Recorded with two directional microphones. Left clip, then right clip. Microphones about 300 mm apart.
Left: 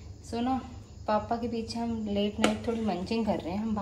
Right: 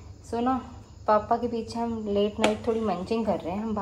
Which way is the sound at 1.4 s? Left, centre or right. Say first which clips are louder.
Right 4 dB; centre.